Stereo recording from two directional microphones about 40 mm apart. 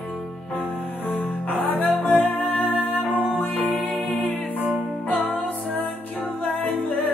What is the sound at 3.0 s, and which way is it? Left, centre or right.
Music, right.